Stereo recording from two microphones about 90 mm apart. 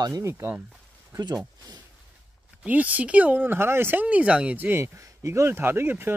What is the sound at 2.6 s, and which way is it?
Speech, 15° right (ahead or behind).